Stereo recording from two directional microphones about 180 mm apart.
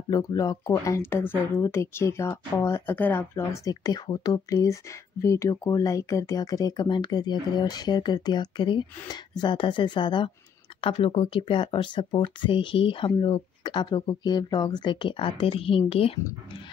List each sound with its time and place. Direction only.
0.1 s speech: 20° left (ahead or behind)